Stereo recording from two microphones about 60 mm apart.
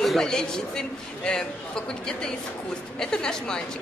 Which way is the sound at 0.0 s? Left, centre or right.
Centre.